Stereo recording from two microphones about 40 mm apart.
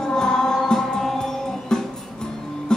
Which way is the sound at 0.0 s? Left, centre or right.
Centre.